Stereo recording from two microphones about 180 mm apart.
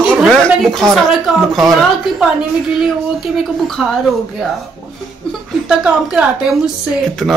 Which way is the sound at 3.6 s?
Centre (ahead or behind).